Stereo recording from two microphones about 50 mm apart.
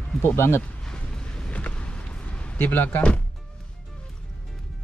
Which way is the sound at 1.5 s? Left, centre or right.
Left.